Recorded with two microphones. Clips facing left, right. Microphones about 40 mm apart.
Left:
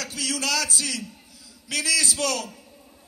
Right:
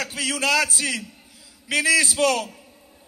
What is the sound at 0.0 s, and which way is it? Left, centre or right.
A man's voice, right.